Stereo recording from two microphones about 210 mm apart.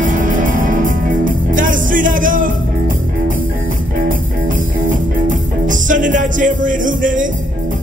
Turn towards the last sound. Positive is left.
turn(degrees=-40)  # may be behind; listen again after turning